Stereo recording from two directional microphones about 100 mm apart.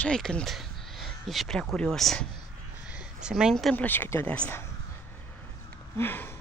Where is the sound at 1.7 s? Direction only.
5° left (ahead or behind).